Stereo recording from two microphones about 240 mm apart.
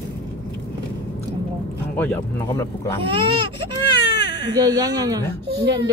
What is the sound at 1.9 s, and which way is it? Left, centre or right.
Speech, centre.